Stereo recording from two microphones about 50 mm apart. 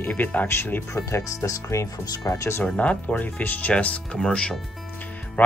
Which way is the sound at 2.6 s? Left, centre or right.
Left.